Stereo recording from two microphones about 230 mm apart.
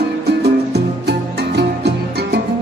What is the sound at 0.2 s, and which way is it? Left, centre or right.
Music, right.